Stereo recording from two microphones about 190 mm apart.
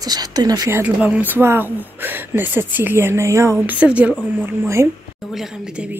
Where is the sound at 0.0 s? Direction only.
20° right (ahead or behind).